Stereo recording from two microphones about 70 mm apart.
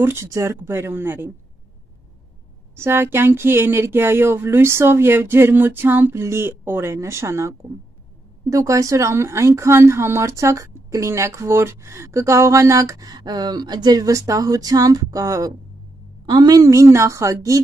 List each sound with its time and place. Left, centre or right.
0.0 s speech: right
0.3 s speech: right
0.7 s speech: right
2.7 s speech: right
16.3 s a woman's voice: right
16.6 s speech: right